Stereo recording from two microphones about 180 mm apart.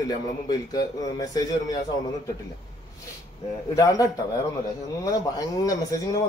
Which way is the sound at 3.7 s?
20° left (ahead or behind).